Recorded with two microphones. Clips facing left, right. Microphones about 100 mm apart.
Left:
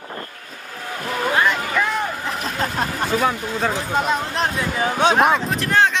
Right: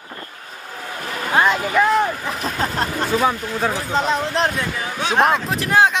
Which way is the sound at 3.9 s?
5° left (ahead or behind).